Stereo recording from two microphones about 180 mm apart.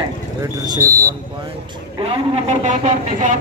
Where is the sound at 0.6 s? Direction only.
20° right (ahead or behind).